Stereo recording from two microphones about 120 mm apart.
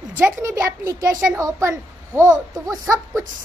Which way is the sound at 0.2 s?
20° right (ahead or behind).